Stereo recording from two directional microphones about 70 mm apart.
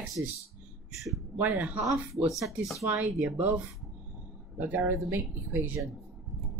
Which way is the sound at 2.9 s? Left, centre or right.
Right.